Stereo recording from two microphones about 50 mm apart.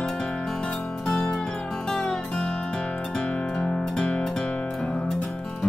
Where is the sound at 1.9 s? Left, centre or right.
Centre.